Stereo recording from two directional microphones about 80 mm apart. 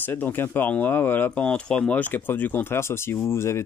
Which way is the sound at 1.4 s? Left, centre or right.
Centre.